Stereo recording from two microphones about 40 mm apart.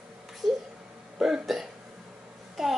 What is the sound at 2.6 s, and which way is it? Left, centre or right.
Child singing, centre.